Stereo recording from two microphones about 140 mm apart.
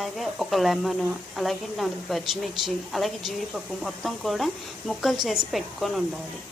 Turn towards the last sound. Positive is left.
turn(degrees=0)  # may be behind; listen again after turning